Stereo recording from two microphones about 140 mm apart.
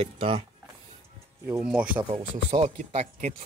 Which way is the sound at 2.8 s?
55° right (ahead or behind).